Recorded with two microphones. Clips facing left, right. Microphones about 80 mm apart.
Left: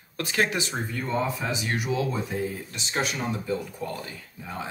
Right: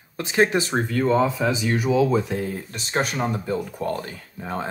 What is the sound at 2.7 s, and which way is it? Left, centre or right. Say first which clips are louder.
Speech: right 7 dB; right.